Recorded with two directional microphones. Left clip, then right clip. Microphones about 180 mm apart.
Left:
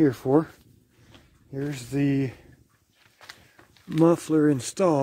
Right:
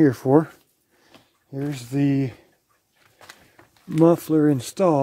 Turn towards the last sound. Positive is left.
turn(degrees=0)  # may be behind; listen again after turning